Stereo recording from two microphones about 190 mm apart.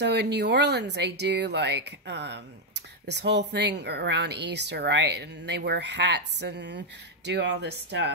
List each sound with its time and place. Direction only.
0.0 s speech: 60° right (ahead or behind)